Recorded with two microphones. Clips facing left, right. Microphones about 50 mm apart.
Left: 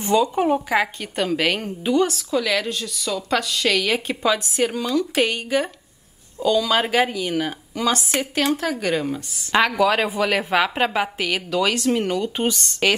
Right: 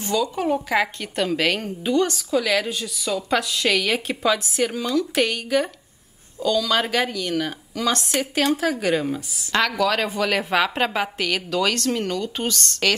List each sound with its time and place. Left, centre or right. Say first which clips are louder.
0.0 s speech: left 4 dB; left
0.6 s a woman's voice: left 1 dB; centre
9.5 s a woman's voice: left 3 dB; centre